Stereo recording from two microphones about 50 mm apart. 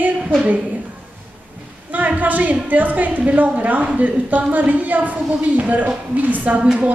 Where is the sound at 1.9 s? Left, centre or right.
Right.